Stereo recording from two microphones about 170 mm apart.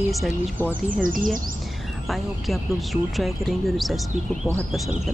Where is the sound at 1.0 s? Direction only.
55° right (ahead or behind).